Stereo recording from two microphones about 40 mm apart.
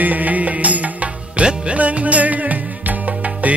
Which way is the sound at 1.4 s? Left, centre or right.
Right.